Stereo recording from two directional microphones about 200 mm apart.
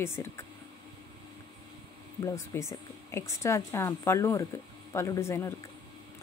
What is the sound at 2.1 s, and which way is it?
A woman's voice, 15° left (ahead or behind).